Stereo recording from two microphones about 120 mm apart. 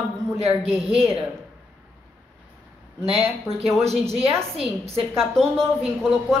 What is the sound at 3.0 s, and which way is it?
Speech, 55° right (ahead or behind).